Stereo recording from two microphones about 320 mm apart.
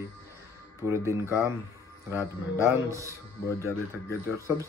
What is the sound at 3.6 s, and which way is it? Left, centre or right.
Speech, centre.